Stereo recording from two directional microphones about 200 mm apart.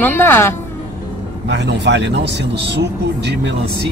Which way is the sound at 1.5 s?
60° right (ahead or behind).